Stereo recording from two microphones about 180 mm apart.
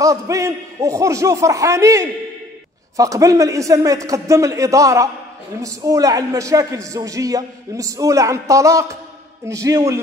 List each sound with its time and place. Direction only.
0.0 s speech: 20° right (ahead or behind)